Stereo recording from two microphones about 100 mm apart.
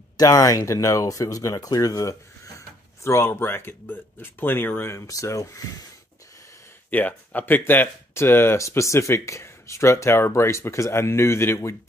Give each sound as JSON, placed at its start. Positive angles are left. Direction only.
{"t": 0.2, "sound": "speech", "side_deg": 35}
{"t": 4.9, "sound": "speech", "side_deg": 30}
{"t": 6.9, "sound": "speech", "side_deg": 15}